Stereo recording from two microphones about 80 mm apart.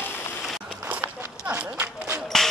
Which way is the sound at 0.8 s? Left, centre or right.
Centre.